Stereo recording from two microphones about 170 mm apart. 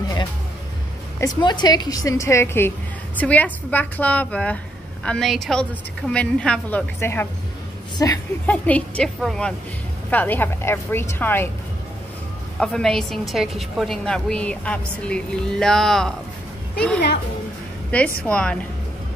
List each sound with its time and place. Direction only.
1.4 s a woman's voice: 25° left (ahead or behind)
8.5 s a woman's voice: 10° left (ahead or behind)
12.5 s a woman's voice: 5° left (ahead or behind)
18.2 s a woman's voice: 5° left (ahead or behind)